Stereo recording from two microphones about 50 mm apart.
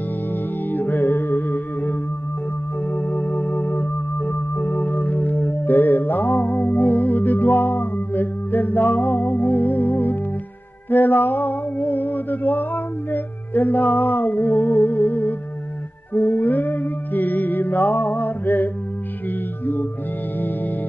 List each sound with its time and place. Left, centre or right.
0.7 s music: left
2.9 s organ: left
4.6 s music: left